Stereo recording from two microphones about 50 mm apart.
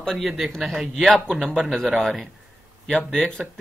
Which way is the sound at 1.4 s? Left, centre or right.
Centre.